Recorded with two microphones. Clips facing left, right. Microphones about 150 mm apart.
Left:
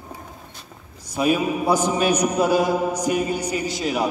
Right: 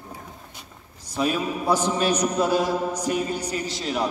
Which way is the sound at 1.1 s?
10° left (ahead or behind).